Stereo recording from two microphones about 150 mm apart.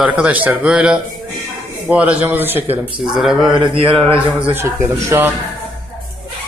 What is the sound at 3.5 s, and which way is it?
Mantra, 35° right (ahead or behind).